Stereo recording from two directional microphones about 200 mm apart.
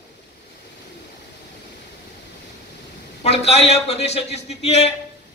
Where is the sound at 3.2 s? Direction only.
30° left (ahead or behind).